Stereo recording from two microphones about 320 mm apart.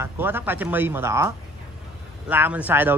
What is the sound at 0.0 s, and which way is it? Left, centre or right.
A woman's voice, centre.